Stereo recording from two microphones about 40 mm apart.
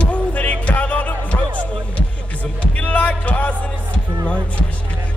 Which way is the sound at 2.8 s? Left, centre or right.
Left.